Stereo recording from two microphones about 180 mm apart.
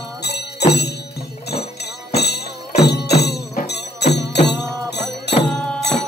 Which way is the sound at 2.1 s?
65° left (ahead or behind).